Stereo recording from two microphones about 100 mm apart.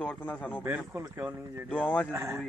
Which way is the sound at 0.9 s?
30° right (ahead or behind).